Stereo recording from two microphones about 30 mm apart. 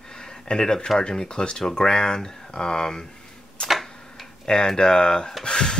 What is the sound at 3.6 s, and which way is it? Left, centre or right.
Speech, left.